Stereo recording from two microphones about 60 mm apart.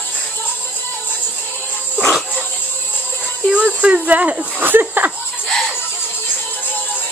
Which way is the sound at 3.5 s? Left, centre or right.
Centre.